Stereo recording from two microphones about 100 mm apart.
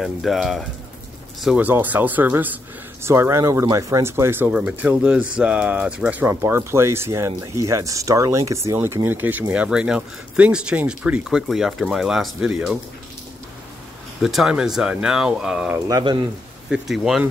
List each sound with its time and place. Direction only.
0.0 s speech: centre (ahead or behind)
1.6 s speech: 15° right (ahead or behind)
4.5 s speech: 15° right (ahead or behind)
6.2 s speech: 25° right (ahead or behind); by 12.7 s 5° right (ahead or behind)
14.2 s speech: 5° right (ahead or behind)
16.7 s speech: 5° right (ahead or behind)